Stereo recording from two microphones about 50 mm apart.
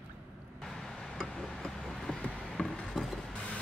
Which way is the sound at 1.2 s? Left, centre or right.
Centre.